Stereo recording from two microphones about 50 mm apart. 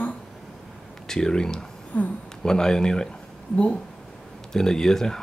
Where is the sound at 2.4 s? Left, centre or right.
Centre.